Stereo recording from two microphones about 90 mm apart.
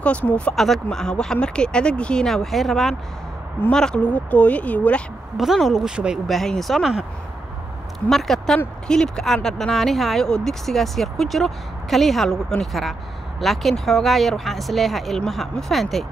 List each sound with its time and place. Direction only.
0.0 s speech: 15° left (ahead or behind)
0.6 s speech: 5° left (ahead or behind)
5.4 s speech: 5° right (ahead or behind)
6.2 s speech: 5° left (ahead or behind)
8.1 s speech: 5° left (ahead or behind)